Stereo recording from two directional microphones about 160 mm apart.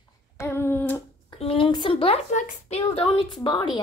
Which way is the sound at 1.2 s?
35° left (ahead or behind).